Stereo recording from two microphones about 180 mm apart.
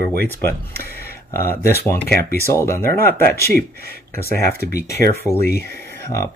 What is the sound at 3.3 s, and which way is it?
Speech, 60° left (ahead or behind).